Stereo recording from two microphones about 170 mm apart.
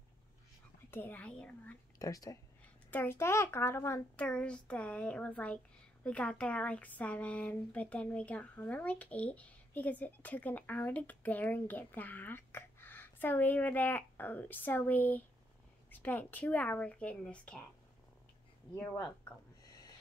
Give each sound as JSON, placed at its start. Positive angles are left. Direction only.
{"t": 0.8, "sound": "speech", "side_deg": 10}
{"t": 2.0, "sound": "a child's voice", "side_deg": 20}
{"t": 18.8, "sound": "a sound", "side_deg": 10}